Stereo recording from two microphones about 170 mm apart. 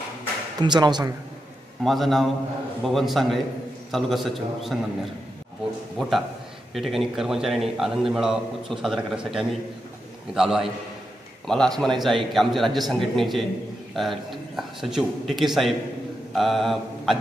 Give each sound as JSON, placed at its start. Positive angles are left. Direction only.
{"t": 0.6, "sound": "speech", "side_deg": -25}
{"t": 1.8, "sound": "a man's voice", "side_deg": 0}
{"t": 5.9, "sound": "a man's voice", "side_deg": 0}